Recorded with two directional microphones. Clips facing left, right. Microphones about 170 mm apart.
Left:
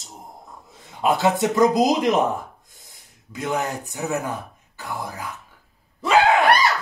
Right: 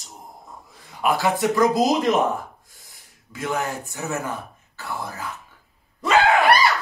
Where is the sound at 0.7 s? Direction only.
20° left (ahead or behind).